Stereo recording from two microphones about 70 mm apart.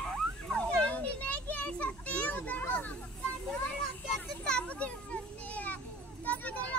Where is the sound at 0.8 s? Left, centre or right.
Left.